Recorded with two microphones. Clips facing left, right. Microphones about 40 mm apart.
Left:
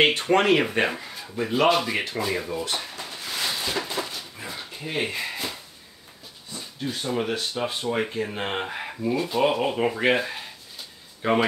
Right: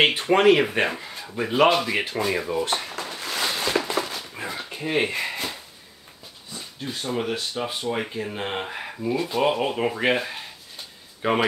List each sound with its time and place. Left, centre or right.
0.0 s speech: centre
3.0 s a sound: right
4.7 s speech: centre